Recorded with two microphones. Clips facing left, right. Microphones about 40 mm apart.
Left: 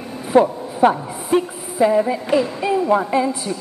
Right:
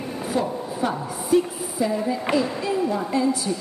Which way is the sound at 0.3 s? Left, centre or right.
Left.